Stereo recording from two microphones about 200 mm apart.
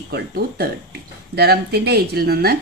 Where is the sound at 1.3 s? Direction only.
50° right (ahead or behind).